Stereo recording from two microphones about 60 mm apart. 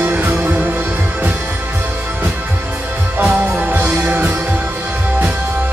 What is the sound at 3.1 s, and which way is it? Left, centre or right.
Music, right.